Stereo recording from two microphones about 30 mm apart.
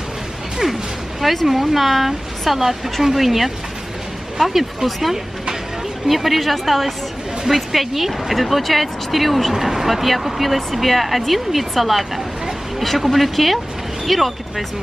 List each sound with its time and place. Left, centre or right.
1.2 s speech: centre
9.5 s speech: centre